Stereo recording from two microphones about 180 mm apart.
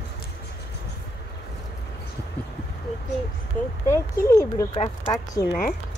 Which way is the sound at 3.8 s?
15° left (ahead or behind).